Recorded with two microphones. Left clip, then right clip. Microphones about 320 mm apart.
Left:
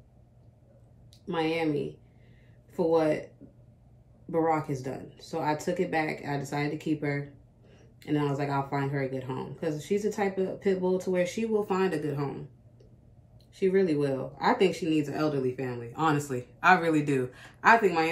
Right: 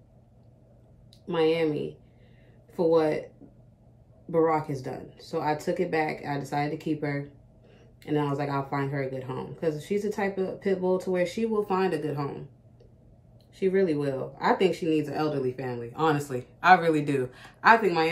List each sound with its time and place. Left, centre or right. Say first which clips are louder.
1.2 s speech: right 4 dB; centre
4.3 s speech: right 3 dB; centre
13.6 s speech: even; centre